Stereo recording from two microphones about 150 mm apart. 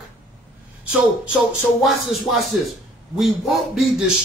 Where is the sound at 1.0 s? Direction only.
5° right (ahead or behind).